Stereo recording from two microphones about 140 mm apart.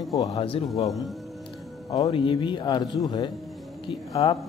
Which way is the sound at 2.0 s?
35° left (ahead or behind).